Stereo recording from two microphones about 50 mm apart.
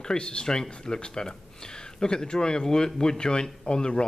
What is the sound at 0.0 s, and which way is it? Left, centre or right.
Speech, centre.